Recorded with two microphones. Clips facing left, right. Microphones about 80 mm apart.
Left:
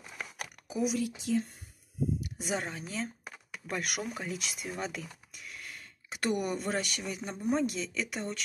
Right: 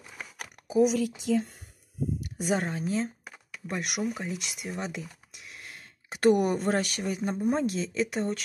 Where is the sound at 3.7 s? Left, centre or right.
Centre.